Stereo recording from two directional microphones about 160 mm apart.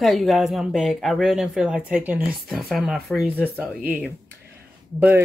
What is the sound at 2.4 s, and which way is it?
Speech, centre (ahead or behind).